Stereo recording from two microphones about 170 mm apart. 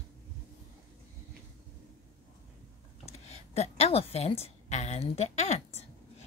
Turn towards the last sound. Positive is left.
turn(degrees=40)  # may be behind; listen again after turning